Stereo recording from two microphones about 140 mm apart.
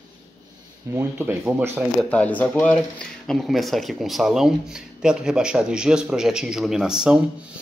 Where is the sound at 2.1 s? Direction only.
10° left (ahead or behind).